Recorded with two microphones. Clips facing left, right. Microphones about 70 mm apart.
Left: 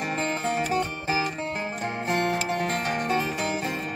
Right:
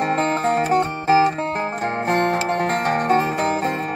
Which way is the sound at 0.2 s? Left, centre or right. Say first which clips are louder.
Right 7 dB; right.